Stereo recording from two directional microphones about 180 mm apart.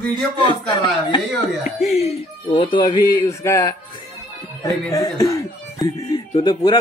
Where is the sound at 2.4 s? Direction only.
25° left (ahead or behind).